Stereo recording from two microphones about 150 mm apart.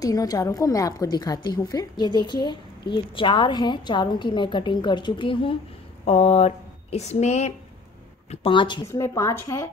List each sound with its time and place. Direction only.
0.0 s a woman's voice: 25° left (ahead or behind); by 7.5 s 50° left (ahead or behind)
8.3 s a woman's voice: 35° left (ahead or behind)
8.8 s a woman's voice: 20° left (ahead or behind)